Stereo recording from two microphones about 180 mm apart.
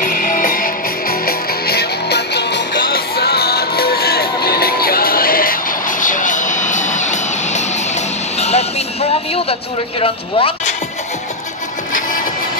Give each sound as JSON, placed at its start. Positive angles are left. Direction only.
{"t": 0.0, "sound": "music", "side_deg": 50}